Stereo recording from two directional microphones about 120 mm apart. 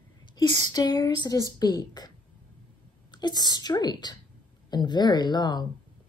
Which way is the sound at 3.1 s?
35° left (ahead or behind).